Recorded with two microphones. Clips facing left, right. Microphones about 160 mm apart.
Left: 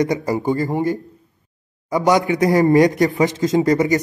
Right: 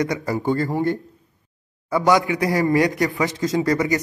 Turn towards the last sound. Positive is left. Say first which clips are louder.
# left 4 dB
turn(degrees=20)  # may be behind; listen again after turning